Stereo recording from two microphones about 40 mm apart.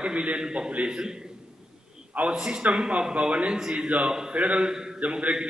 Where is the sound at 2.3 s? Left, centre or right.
Right.